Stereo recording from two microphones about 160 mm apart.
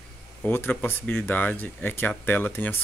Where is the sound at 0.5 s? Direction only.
15° left (ahead or behind).